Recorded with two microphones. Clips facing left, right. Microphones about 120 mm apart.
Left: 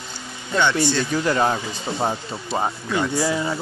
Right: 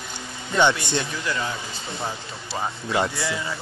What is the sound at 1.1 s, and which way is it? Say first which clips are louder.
Speech: left 8 dB; 55° left (ahead or behind).